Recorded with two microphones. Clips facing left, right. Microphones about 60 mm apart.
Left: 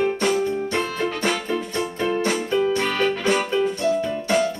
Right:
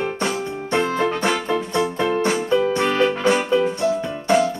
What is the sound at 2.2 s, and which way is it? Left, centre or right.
Music, right.